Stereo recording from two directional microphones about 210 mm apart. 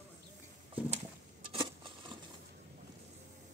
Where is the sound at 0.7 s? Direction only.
30° right (ahead or behind).